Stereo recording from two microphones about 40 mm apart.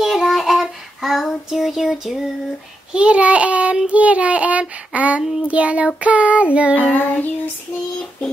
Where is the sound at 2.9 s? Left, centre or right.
Right.